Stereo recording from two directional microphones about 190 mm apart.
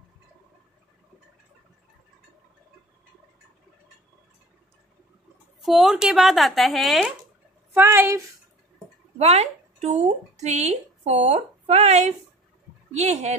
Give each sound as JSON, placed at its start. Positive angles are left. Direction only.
{"t": 5.6, "sound": "speech", "side_deg": 0}
{"t": 7.7, "sound": "a woman's voice", "side_deg": -10}
{"t": 9.2, "sound": "speech", "side_deg": -35}